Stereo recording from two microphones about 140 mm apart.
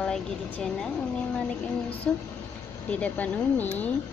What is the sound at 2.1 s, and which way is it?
Female singing, 10° left (ahead or behind).